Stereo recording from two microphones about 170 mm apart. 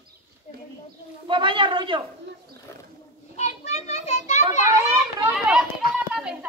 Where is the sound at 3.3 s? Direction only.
40° left (ahead or behind).